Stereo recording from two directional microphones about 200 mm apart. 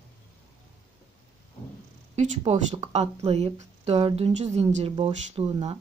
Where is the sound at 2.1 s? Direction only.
35° right (ahead or behind).